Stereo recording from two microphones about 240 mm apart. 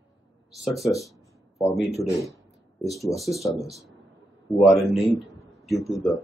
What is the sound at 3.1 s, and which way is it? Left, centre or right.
Speech, centre.